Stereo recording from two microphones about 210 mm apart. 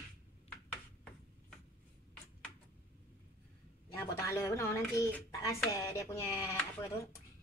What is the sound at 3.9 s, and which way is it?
Speech, 10° left (ahead or behind).